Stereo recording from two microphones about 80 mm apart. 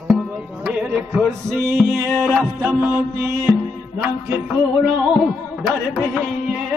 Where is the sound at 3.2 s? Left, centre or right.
Right.